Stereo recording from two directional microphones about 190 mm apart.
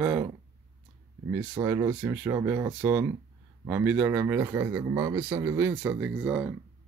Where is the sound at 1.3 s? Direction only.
15° right (ahead or behind).